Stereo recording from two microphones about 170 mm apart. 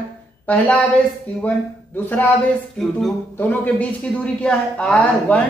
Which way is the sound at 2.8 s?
5° left (ahead or behind).